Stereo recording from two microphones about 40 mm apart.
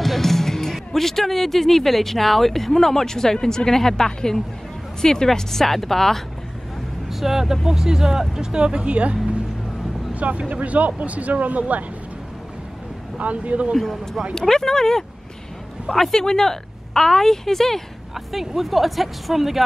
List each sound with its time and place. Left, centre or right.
0.0 s a woman's voice: centre
7.1 s speech: centre; by 11.8 s right
13.2 s speech: right
13.7 s a woman's voice: centre
18.1 s speech: centre